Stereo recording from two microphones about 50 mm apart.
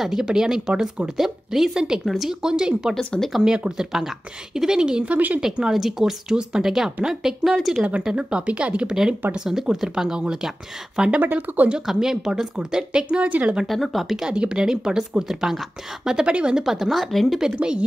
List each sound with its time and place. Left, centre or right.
0.0 s speech: centre; by 5.4 s right
5.4 s speech: centre
8.0 s speech: centre
9.3 s speech: centre
11.4 s speech: right
11.8 s speech: centre
13.2 s speech: right
13.7 s speech: centre
14.3 s speech: centre
16.6 s speech: centre
17.4 s speech: centre